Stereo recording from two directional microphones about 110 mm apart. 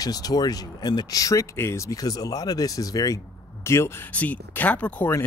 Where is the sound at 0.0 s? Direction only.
35° left (ahead or behind).